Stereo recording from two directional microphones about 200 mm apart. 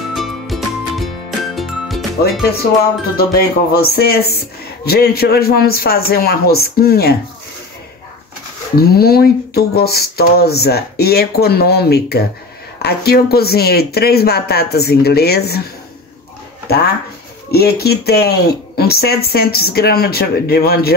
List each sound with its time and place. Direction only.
0.1 s music: centre (ahead or behind)
3.2 s speech: 50° left (ahead or behind)
8.7 s speech: 50° left (ahead or behind)
16.6 s speech: 55° left (ahead or behind)